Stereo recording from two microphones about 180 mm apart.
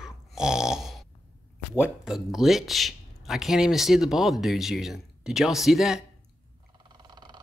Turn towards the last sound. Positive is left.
turn(degrees=-25)  # may be behind; listen again after turning